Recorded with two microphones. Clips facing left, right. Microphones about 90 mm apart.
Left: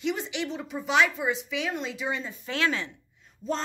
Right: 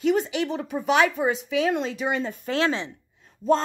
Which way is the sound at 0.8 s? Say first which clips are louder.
Right 3 dB; 50° right (ahead or behind).